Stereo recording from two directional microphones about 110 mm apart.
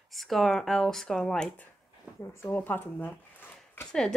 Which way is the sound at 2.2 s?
25° left (ahead or behind).